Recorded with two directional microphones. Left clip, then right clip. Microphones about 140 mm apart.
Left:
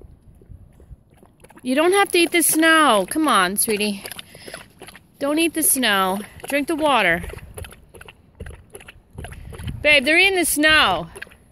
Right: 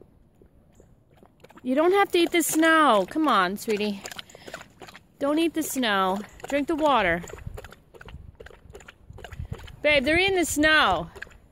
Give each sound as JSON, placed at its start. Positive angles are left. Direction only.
{"t": 1.6, "sound": "speech", "side_deg": -10}
{"t": 4.0, "sound": "a sound", "side_deg": 10}
{"t": 5.2, "sound": "speech", "side_deg": -10}
{"t": 7.2, "sound": "clip-clop", "side_deg": 10}
{"t": 9.8, "sound": "speech", "side_deg": -15}